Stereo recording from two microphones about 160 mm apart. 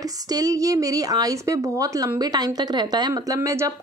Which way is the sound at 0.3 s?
20° right (ahead or behind).